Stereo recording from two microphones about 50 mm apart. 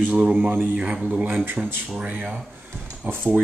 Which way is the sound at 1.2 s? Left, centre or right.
Right.